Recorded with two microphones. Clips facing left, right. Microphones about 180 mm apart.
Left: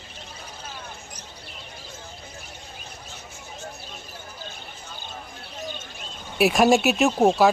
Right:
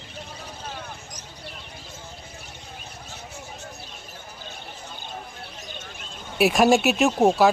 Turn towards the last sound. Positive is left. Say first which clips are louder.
# even
turn(degrees=0)  # may be behind; listen again after turning